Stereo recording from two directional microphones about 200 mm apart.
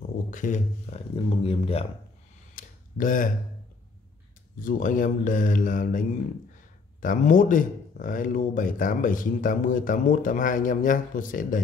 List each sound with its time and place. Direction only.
0.3 s speech: 40° left (ahead or behind)
2.5 s a sound: 40° left (ahead or behind)
4.6 s speech: 40° left (ahead or behind)